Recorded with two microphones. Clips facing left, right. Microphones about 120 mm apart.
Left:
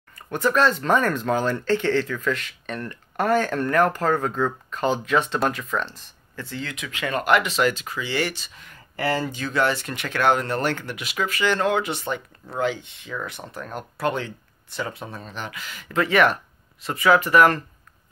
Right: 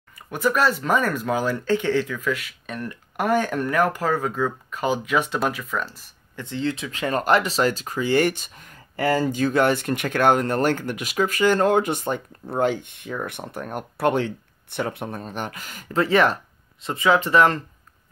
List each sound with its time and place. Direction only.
0.3 s speech: 10° right (ahead or behind)
6.3 s speech: 20° right (ahead or behind); by 16.0 s 45° right (ahead or behind)
16.0 s speech: 30° right (ahead or behind)